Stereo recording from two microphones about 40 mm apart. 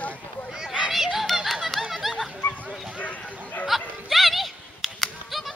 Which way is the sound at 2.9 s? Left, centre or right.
Left.